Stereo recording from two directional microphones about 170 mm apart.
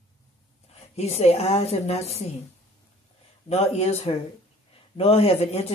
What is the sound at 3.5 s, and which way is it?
Speech, 40° left (ahead or behind).